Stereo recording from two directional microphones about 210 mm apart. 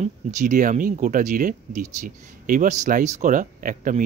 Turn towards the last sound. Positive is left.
turn(degrees=-40)  # may be behind; listen again after turning